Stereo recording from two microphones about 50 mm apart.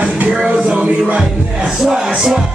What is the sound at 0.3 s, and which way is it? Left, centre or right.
Music, right.